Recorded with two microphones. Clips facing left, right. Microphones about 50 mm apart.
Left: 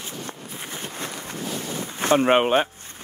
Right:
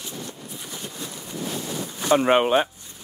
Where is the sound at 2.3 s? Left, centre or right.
Centre.